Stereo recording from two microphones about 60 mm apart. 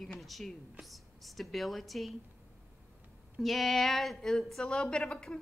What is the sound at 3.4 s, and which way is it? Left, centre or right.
Speech, centre.